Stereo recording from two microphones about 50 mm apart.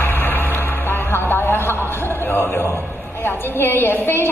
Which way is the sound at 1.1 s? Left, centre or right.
Left.